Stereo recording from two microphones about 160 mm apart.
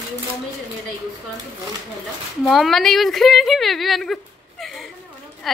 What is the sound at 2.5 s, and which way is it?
Speech, centre (ahead or behind).